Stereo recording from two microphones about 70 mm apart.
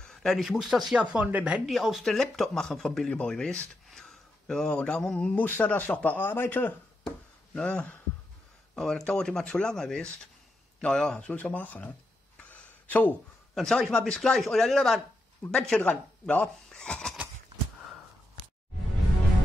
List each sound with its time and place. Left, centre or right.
0.0 s a sound: centre
0.5 s speech: centre
1.2 s speech: centre
1.7 s speech: centre; by 6.7 s left
7.5 s speech: centre
12.4 s a sound: left
13.6 s speech: centre
15.8 s speech: centre
16.6 s a sound: centre